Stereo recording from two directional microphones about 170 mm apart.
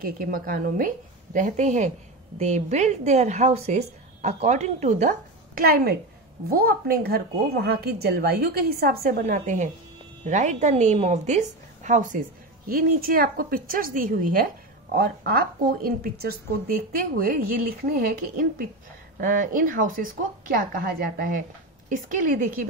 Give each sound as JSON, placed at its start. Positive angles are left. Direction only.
{"t": 0.0, "sound": "a woman's voice", "side_deg": -60}